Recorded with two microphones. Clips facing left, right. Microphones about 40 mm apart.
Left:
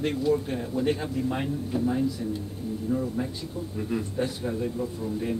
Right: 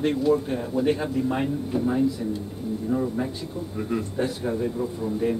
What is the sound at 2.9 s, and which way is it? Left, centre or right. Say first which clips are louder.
Speech: right 3 dB; right.